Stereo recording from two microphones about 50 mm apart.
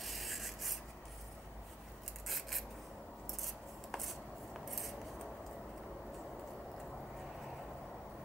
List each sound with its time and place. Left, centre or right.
0.0 s rub: centre
2.2 s filing: centre
3.9 s a sound: centre